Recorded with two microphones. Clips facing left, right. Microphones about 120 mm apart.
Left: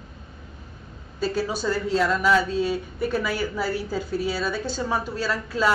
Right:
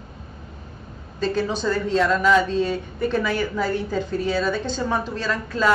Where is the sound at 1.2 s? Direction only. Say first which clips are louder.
Right 2 dB; 5° left (ahead or behind).